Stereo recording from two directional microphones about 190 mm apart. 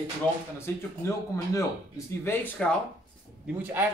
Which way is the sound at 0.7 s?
15° left (ahead or behind).